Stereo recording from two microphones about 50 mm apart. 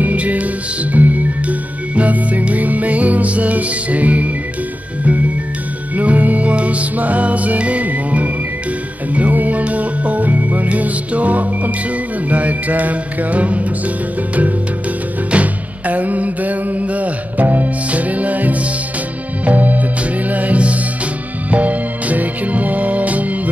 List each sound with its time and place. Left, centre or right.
0.0 s music: right
5.9 s music: right
15.3 s music: right